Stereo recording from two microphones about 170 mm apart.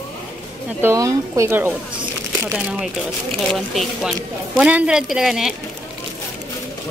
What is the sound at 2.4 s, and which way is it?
Speech, 5° right (ahead or behind).